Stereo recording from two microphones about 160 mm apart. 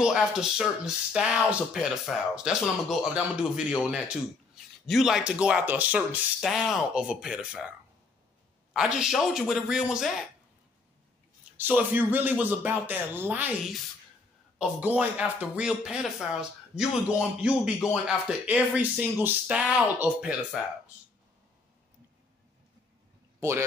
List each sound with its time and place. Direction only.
0.0 s speech: 5° right (ahead or behind)
8.7 s speech: 5° right (ahead or behind)
11.5 s speech: 10° right (ahead or behind)
23.4 s speech: 15° right (ahead or behind)